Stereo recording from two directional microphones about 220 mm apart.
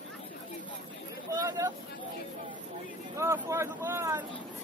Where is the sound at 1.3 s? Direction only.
15° right (ahead or behind).